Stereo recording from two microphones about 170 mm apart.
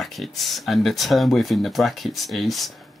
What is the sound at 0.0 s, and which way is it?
Speech, centre (ahead or behind).